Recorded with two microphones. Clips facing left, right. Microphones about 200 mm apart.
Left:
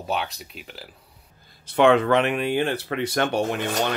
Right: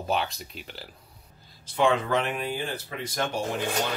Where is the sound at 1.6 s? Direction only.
65° left (ahead or behind).